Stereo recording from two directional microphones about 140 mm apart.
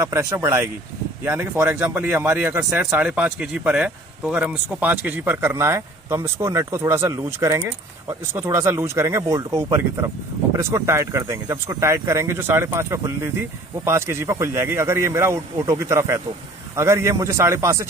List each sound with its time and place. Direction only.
0.0 s speech: 20° right (ahead or behind)